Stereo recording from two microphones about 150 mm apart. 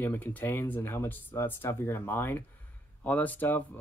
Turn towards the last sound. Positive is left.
turn(degrees=15)  # may be behind; listen again after turning